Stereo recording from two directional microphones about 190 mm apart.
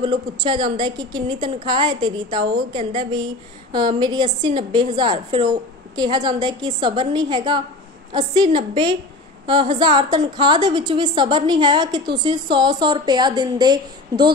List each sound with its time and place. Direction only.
0.0 s a woman's voice: 25° right (ahead or behind)